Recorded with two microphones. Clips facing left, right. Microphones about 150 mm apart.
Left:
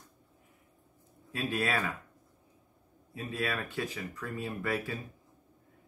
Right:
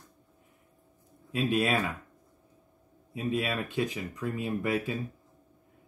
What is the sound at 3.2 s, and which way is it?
Speech, 20° right (ahead or behind).